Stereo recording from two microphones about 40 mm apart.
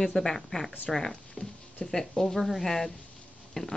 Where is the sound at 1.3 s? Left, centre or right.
Left.